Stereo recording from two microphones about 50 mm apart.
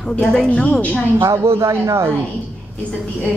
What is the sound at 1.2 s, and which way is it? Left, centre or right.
Speech, right.